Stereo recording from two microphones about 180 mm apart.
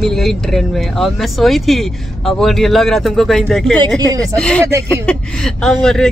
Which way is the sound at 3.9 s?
20° right (ahead or behind).